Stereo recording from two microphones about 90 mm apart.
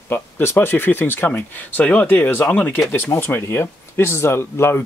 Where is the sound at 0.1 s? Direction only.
25° left (ahead or behind).